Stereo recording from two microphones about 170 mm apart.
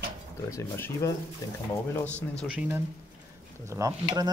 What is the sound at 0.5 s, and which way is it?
Speech, 15° left (ahead or behind).